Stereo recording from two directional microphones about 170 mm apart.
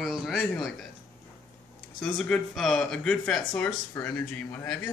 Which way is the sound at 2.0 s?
5° left (ahead or behind).